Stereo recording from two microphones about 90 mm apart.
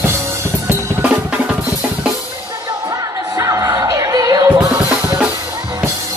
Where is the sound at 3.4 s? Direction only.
40° right (ahead or behind).